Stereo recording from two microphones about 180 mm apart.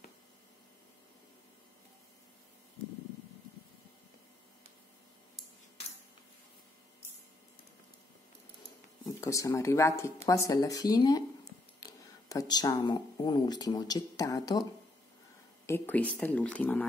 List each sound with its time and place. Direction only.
9.0 s speech: 20° left (ahead or behind)